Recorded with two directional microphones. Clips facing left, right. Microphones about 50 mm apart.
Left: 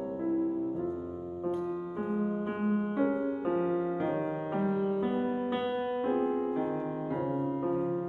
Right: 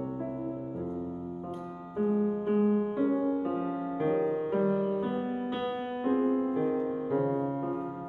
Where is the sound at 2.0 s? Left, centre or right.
Centre.